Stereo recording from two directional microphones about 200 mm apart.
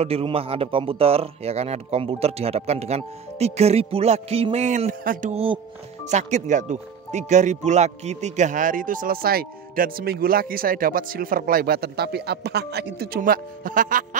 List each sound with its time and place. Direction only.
0.0 s a man's voice: 30° right (ahead or behind)